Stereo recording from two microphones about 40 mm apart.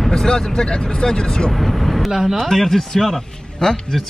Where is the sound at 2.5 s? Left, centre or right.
Centre.